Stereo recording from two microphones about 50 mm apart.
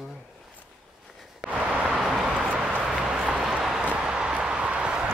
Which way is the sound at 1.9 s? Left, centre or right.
Centre.